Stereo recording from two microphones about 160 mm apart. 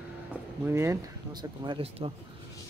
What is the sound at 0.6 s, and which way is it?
Speech, 15° right (ahead or behind).